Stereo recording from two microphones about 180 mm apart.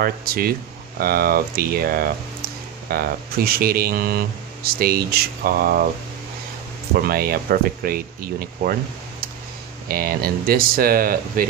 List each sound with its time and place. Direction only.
0.0 s speech: 55° right (ahead or behind)
7.0 s speech: 55° right (ahead or behind)
9.8 s speech: 55° right (ahead or behind)